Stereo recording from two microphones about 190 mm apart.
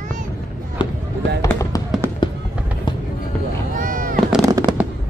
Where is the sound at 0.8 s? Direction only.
25° left (ahead or behind).